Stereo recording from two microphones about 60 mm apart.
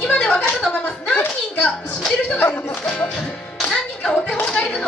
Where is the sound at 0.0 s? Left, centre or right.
Centre.